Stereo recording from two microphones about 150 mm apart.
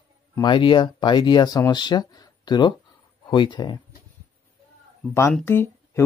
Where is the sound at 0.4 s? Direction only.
35° left (ahead or behind).